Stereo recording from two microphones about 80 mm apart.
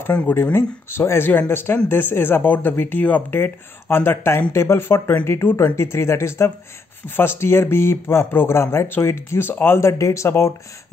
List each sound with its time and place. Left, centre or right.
0.1 s speech: centre
0.4 s speech: left